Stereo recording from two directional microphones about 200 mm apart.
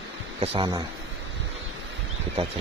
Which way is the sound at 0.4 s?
30° right (ahead or behind).